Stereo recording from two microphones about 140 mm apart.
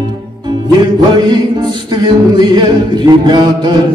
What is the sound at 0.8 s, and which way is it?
Music, 30° right (ahead or behind).